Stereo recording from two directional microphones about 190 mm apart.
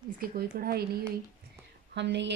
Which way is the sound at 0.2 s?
50° right (ahead or behind).